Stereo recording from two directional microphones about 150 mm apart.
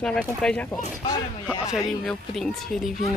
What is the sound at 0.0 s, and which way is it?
Speech, 5° left (ahead or behind).